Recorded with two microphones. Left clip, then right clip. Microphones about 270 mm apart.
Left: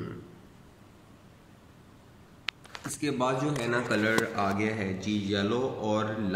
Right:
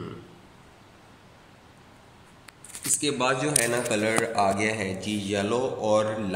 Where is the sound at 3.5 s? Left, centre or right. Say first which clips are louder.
Right 3 dB; centre.